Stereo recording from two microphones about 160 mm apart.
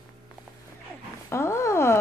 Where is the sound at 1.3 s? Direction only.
15° left (ahead or behind).